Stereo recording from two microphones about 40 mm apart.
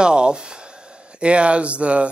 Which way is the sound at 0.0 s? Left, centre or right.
Right.